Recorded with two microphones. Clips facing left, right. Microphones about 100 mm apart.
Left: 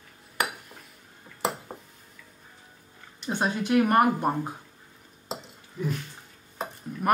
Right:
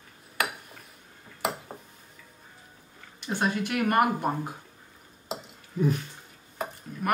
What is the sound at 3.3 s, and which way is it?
Speech, 25° left (ahead or behind).